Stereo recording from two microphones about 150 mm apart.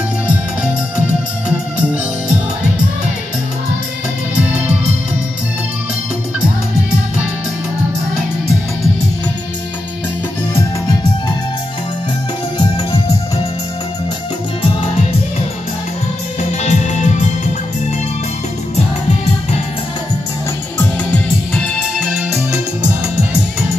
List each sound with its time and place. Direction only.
10.5 s music: 20° left (ahead or behind)
12.5 s music: 25° left (ahead or behind)
16.3 s music: 55° left (ahead or behind)
20.8 s music: 5° left (ahead or behind)